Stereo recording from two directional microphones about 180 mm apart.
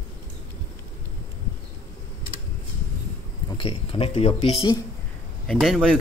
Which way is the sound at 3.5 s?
30° left (ahead or behind).